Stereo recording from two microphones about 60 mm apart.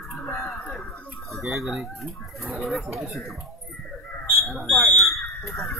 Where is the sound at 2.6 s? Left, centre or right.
Centre.